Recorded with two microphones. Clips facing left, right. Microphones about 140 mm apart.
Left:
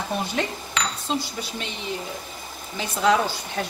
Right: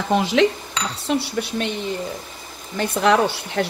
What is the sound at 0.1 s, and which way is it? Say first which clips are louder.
Speech: right 11 dB; 90° right.